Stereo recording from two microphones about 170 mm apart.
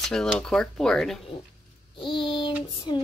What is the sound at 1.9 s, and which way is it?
Child singing, 30° left (ahead or behind).